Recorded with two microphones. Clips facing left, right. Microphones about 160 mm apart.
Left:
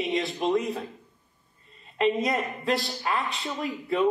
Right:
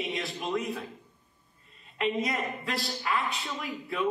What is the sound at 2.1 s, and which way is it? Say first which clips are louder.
Speech: left 2 dB; centre (ahead or behind).